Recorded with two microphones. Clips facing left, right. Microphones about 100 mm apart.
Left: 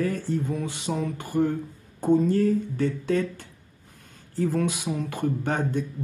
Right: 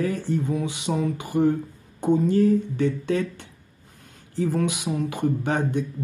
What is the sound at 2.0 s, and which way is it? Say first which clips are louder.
Speech: even; 15° right (ahead or behind).